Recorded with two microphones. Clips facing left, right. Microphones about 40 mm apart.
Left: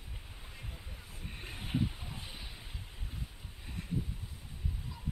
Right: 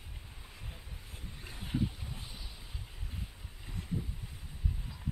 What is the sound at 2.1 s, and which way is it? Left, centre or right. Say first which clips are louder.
Vehicle: left 1 dB; left.